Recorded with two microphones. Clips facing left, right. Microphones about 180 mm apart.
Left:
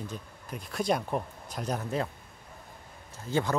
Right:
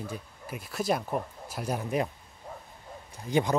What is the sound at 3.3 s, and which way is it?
Speech, 15° right (ahead or behind).